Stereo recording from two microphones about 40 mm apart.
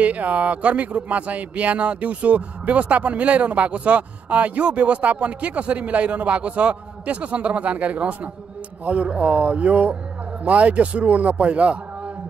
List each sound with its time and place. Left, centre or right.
0.0 s speech: right